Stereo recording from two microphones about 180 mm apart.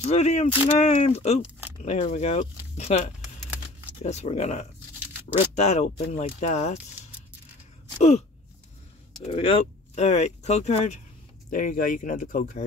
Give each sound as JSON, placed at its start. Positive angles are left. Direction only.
{"t": 0.0, "sound": "speech", "side_deg": 40}
{"t": 9.2, "sound": "speech", "side_deg": 35}
{"t": 11.5, "sound": "speech", "side_deg": 50}